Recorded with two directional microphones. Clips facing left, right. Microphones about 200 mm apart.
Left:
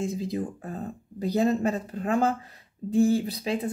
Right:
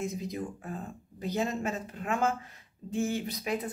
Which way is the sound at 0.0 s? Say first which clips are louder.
Left 5 dB; 30° left (ahead or behind).